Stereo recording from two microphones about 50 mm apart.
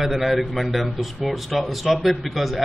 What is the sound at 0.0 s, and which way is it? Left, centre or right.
A man's voice, centre.